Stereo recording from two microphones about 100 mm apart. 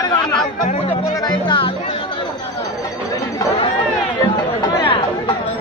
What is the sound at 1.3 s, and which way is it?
Music, 55° left (ahead or behind).